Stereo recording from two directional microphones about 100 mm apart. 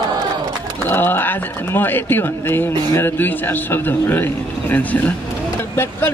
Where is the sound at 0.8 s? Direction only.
20° left (ahead or behind).